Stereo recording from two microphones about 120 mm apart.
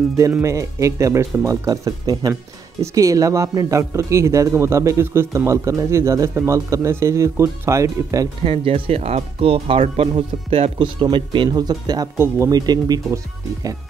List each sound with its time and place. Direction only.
0.4 s a man's voice: 25° right (ahead or behind)
8.5 s speech: 50° right (ahead or behind); by 12.1 s 35° right (ahead or behind)
12.2 s a man's voice: 20° right (ahead or behind)
12.5 s speech: 35° right (ahead or behind)